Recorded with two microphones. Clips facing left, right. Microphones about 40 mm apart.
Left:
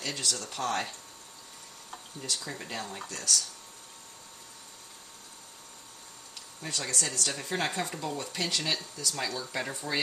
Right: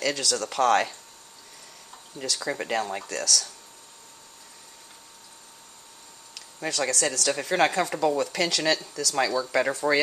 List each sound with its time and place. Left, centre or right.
0.0 s speech: right
2.1 s speech: right
3.0 s speech: right
6.3 s speech: right